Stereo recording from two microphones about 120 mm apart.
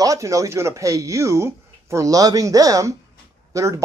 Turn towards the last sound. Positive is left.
turn(degrees=-25)  # may be behind; listen again after turning